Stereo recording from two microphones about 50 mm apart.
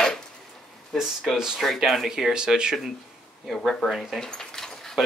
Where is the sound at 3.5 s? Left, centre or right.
Centre.